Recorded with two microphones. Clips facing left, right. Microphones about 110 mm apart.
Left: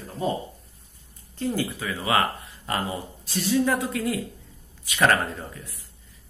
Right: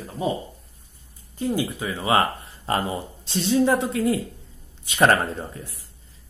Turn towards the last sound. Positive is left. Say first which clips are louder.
# right 4 dB
turn(degrees=-30)  # may be behind; listen again after turning